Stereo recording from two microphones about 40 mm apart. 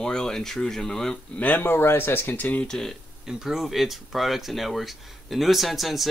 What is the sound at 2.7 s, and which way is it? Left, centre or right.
Speech, centre.